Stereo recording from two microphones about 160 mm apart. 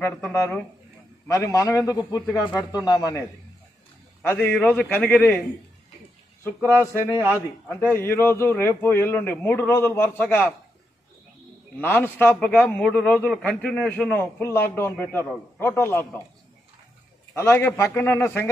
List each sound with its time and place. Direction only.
0.0 s a man's voice: 20° left (ahead or behind)
6.8 s a man's voice: 15° left (ahead or behind)
7.2 s a man's voice: 10° right (ahead or behind)
7.6 s a man's voice: 10° left (ahead or behind)
11.8 s a man's voice: 15° left (ahead or behind)
17.3 s a man's voice: 15° left (ahead or behind)